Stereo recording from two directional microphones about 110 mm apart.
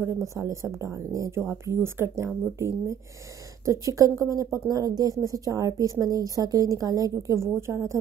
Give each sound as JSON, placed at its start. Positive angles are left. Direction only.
{"t": 0.0, "sound": "speech", "side_deg": -30}